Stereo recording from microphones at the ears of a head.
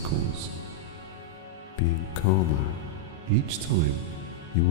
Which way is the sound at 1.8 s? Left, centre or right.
Left.